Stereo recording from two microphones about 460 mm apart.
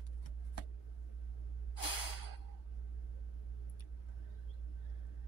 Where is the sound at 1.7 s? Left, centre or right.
Left.